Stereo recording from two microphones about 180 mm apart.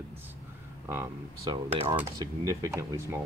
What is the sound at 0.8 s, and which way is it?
Speech, 15° right (ahead or behind).